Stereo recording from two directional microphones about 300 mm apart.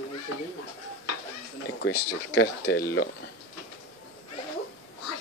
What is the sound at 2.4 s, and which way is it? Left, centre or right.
Speech, left.